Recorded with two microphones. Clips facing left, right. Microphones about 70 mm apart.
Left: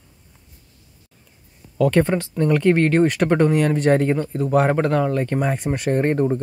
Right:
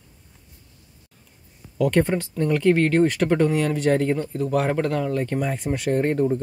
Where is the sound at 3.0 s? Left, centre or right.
Left.